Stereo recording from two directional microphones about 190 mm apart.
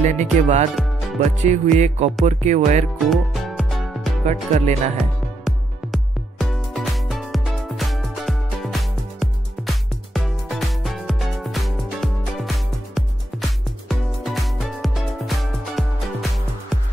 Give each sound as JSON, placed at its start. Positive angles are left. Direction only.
{"t": 0.0, "sound": "music", "side_deg": -40}
{"t": 3.1, "sound": "music", "side_deg": 0}
{"t": 4.3, "sound": "music", "side_deg": -35}
{"t": 5.4, "sound": "music", "side_deg": 0}